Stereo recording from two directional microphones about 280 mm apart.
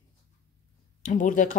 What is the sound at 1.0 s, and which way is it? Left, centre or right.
Speech, left.